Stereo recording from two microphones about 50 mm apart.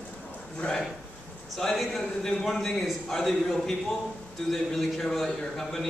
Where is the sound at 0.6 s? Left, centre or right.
Centre.